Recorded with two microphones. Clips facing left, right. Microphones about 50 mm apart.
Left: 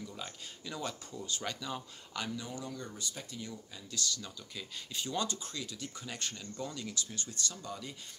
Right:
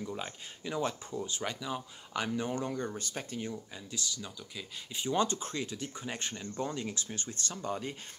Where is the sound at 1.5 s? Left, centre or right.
Centre.